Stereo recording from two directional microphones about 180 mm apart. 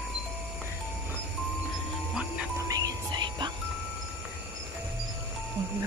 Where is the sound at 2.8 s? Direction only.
25° right (ahead or behind).